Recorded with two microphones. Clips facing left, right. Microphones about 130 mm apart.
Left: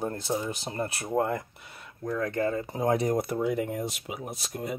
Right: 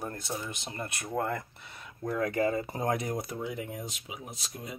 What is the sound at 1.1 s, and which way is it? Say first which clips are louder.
Speech: left 4 dB; 20° left (ahead or behind).